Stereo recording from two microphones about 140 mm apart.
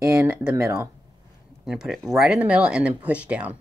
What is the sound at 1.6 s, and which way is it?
Speech, 5° right (ahead or behind).